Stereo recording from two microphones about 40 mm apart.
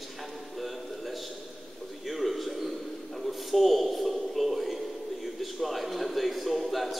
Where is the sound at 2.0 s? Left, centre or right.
Centre.